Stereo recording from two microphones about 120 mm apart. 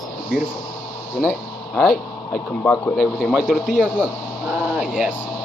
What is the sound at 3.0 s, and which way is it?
Speech, 5° left (ahead or behind).